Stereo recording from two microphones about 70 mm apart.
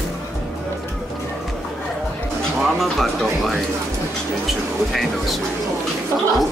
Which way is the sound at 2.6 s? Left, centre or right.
Centre.